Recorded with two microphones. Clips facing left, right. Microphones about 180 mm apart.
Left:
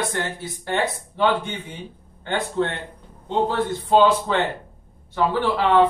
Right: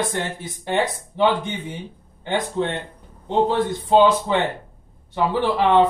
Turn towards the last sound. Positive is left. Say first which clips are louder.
# right 1 dB
turn(degrees=-20)  # may be behind; listen again after turning